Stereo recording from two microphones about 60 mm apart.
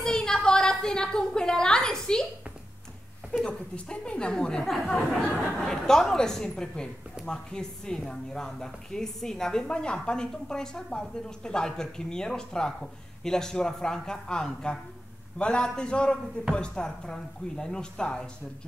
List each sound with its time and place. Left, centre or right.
0.0 s a woman's voice: centre
3.4 s a woman's voice: centre